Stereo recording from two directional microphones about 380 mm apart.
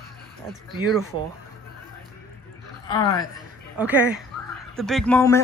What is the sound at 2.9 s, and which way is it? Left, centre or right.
Speech, centre.